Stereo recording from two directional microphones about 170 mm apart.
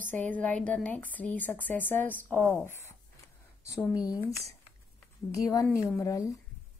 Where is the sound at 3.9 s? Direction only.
20° left (ahead or behind).